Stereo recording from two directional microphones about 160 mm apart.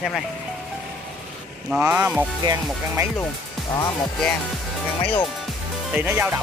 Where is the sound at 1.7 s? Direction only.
10° right (ahead or behind).